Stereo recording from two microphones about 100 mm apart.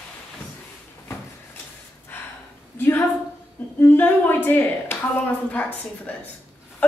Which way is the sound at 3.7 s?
20° left (ahead or behind).